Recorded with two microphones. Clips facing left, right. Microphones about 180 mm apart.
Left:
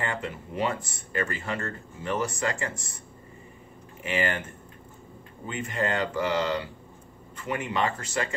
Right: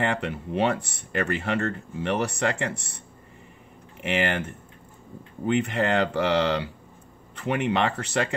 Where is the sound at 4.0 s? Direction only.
70° right (ahead or behind).